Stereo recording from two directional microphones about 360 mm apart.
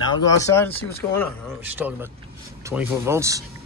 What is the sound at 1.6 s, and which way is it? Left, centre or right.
Speech, centre.